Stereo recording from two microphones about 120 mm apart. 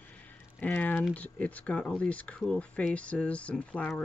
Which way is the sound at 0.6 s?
10° left (ahead or behind).